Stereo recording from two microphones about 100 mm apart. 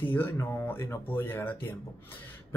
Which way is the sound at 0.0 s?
20° left (ahead or behind).